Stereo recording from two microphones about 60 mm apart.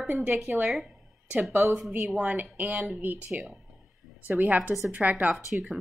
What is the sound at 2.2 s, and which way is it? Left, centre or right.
Speech, right.